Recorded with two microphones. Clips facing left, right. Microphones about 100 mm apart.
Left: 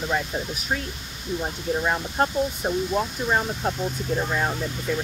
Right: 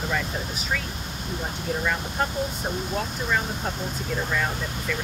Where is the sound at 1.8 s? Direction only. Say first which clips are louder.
Left 3 dB; 35° left (ahead or behind).